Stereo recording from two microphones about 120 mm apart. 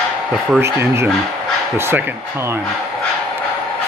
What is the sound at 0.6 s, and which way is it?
Speech, 20° right (ahead or behind).